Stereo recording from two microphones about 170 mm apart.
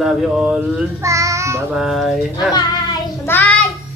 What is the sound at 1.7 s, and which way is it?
Speech, centre (ahead or behind).